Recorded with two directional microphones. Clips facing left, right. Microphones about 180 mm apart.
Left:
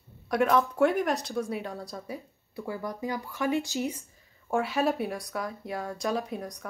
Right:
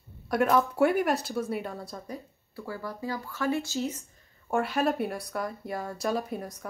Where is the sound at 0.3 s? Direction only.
Centre (ahead or behind).